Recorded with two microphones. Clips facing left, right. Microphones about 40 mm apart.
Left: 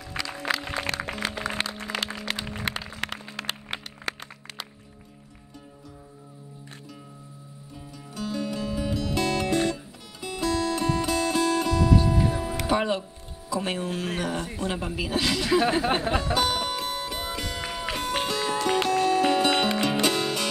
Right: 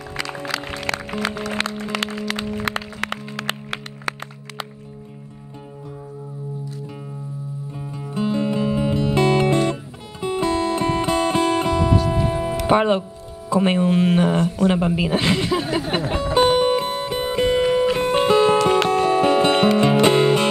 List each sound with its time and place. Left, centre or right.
0.9 s music: right
1.6 s music: right
7.9 s music: right
13.5 s speech: right
15.9 s speech: right
16.3 s music: right